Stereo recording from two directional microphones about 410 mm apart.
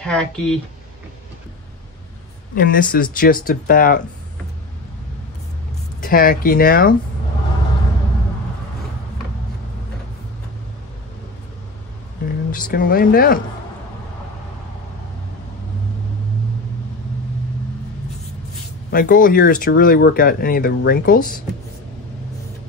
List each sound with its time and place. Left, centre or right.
0.0 s speech: centre
2.5 s speech: centre
5.9 s speech: left
12.4 s speech: centre
18.9 s speech: left